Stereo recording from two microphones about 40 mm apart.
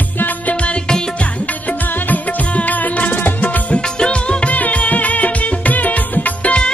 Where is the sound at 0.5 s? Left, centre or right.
Left.